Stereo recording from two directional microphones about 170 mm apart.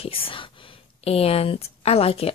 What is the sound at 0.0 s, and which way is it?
Speech, 35° left (ahead or behind).